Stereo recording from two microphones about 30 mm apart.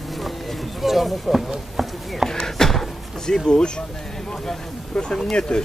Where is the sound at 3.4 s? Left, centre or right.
Left.